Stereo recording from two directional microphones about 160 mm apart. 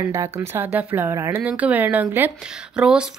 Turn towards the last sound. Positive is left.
turn(degrees=-5)  # may be behind; listen again after turning